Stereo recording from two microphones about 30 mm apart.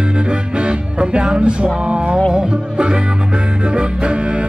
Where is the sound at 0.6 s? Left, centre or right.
Right.